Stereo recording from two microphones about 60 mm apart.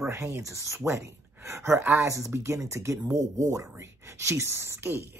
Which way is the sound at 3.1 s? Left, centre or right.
Right.